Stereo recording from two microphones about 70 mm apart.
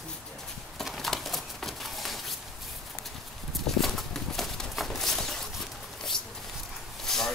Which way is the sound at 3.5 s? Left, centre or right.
Centre.